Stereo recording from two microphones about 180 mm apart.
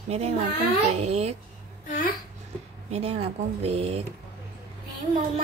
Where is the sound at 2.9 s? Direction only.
35° right (ahead or behind).